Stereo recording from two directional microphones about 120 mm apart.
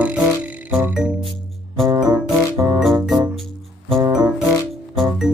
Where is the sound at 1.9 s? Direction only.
30° right (ahead or behind).